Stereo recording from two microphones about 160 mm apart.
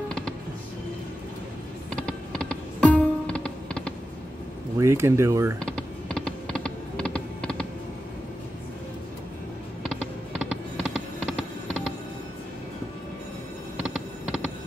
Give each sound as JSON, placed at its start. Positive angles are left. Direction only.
{"t": 1.9, "sound": "music", "side_deg": 5}
{"t": 4.7, "sound": "speech", "side_deg": -15}
{"t": 5.6, "sound": "typing", "side_deg": 5}
{"t": 10.5, "sound": "music", "side_deg": -5}
{"t": 13.8, "sound": "a sound", "side_deg": 0}